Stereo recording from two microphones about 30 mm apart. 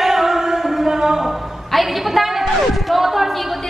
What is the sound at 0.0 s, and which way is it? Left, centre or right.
Music, centre.